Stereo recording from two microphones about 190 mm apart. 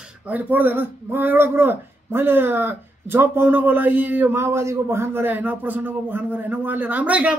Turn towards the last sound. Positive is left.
turn(degrees=-5)  # may be behind; listen again after turning